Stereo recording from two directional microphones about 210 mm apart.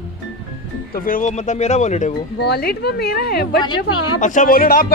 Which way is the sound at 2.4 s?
50° left (ahead or behind).